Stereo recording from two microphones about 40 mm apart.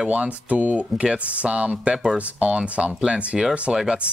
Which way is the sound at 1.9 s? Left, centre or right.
Centre.